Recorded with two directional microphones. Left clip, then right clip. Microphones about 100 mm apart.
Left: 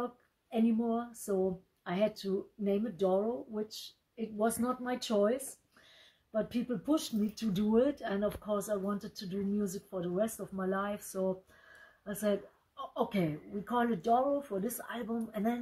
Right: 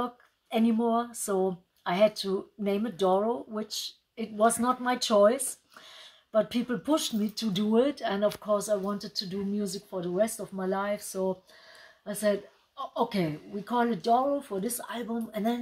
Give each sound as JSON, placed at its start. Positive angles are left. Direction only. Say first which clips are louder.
{"t": 0.5, "sound": "speech", "louder": "right 6 dB", "side_deg": -20}
{"t": 9.8, "sound": "speech", "louder": "right 7 dB", "side_deg": -20}